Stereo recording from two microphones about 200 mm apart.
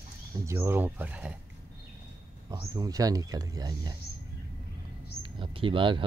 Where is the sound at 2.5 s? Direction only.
20° right (ahead or behind).